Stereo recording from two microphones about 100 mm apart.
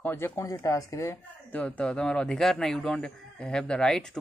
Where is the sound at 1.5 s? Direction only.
10° left (ahead or behind).